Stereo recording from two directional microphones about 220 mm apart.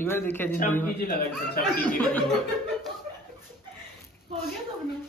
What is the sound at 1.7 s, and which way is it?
Speech, 5° left (ahead or behind).